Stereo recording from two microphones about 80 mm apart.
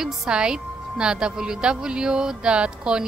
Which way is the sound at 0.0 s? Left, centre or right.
Centre.